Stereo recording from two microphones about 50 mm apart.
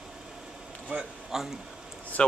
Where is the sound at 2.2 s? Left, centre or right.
Left.